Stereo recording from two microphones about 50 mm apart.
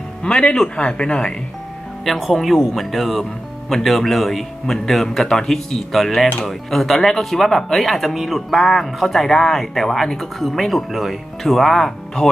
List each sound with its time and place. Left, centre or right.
0.2 s speech: centre
2.0 s speech: centre